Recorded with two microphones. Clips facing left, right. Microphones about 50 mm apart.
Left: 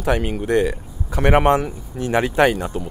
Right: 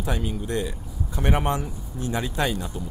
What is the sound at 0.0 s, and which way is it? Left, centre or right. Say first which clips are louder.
Speech: left 8 dB; left.